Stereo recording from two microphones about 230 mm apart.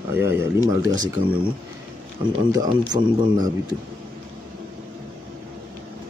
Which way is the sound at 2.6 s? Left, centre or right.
Centre.